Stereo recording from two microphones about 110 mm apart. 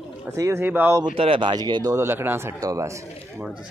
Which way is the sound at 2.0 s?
20° right (ahead or behind).